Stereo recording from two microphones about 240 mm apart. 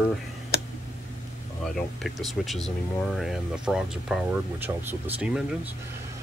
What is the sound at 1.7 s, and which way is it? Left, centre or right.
Speech, centre.